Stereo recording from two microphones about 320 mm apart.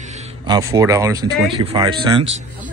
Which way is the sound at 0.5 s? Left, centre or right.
Centre.